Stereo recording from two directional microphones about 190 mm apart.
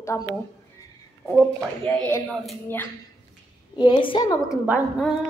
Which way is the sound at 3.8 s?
20° left (ahead or behind).